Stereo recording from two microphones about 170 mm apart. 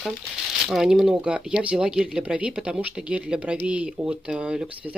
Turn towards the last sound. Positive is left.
turn(degrees=-5)  # may be behind; listen again after turning